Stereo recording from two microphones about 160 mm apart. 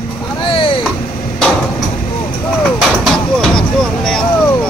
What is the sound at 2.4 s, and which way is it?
Vehicle, centre (ahead or behind).